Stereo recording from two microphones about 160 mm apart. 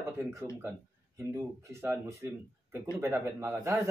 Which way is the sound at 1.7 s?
15° right (ahead or behind).